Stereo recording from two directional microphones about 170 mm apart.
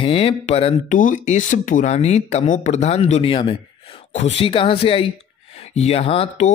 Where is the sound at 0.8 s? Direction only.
50° left (ahead or behind).